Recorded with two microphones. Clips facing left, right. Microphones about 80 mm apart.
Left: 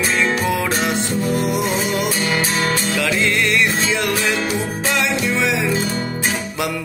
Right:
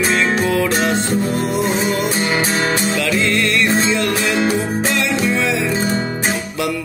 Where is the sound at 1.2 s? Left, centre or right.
Right.